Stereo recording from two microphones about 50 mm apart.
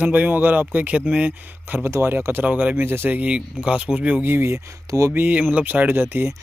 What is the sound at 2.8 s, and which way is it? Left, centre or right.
Speech, right.